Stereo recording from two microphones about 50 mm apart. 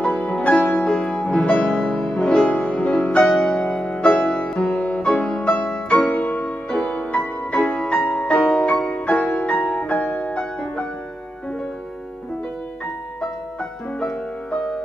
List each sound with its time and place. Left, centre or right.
0.0 s music: left
4.7 s music: left
13.2 s music: left